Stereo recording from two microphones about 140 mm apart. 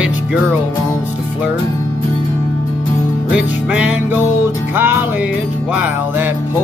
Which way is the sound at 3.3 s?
10° right (ahead or behind).